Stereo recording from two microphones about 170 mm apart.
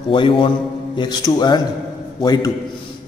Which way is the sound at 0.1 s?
30° left (ahead or behind).